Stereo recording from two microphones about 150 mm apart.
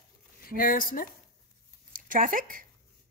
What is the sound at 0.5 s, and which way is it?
Speech, 70° left (ahead or behind).